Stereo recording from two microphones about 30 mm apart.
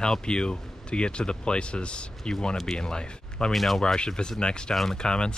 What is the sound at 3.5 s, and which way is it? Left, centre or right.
Speech, centre.